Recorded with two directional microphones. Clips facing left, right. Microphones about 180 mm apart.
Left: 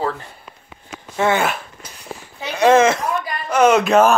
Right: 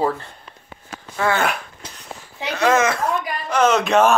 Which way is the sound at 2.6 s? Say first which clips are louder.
Left 5 dB; 25° left (ahead or behind).